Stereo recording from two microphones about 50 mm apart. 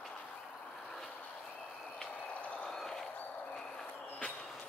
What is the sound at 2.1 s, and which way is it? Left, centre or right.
Vehicle, left.